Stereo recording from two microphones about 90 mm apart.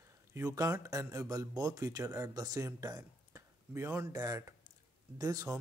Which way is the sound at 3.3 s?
30° right (ahead or behind).